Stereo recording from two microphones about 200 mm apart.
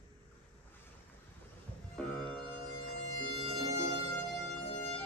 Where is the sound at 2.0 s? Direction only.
5° left (ahead or behind).